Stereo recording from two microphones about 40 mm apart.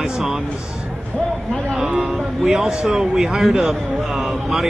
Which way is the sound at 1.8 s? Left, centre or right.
Right.